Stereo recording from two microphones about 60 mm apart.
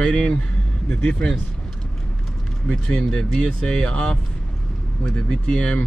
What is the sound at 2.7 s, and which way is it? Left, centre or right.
Speech, centre.